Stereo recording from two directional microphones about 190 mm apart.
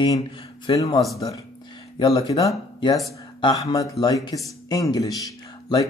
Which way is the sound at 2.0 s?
20° left (ahead or behind).